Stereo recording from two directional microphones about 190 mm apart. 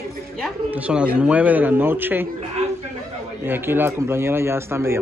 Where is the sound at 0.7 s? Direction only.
5° right (ahead or behind).